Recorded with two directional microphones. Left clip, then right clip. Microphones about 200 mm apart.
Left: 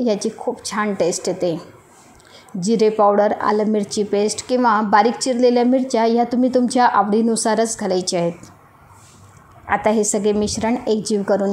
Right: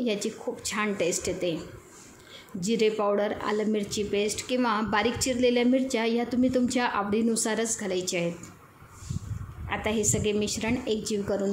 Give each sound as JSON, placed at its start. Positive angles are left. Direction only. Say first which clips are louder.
{"t": 0.0, "sound": "speech", "louder": "left 9 dB", "side_deg": 25}
{"t": 2.6, "sound": "speech", "louder": "left 10 dB", "side_deg": 25}
{"t": 9.7, "sound": "speech", "louder": "left 11 dB", "side_deg": 25}